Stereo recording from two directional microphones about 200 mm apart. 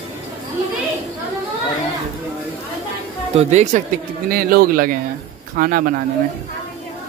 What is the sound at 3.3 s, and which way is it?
Speech, 35° right (ahead or behind).